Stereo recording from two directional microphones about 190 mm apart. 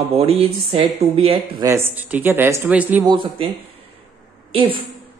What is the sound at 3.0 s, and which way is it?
Speech, 25° right (ahead or behind).